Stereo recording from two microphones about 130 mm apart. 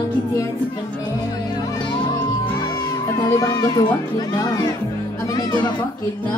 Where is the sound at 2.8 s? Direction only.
25° left (ahead or behind).